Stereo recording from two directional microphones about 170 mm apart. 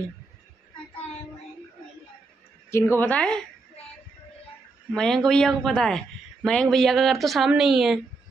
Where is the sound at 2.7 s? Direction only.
10° left (ahead or behind).